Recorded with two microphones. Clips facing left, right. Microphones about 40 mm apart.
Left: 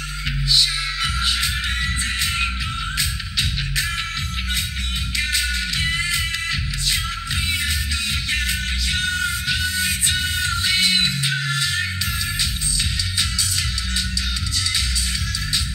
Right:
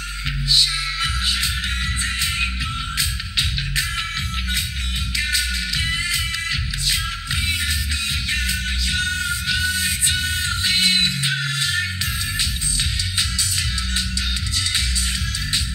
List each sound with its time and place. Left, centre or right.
5.1 s music: left
8.3 s music: left
9.8 s music: right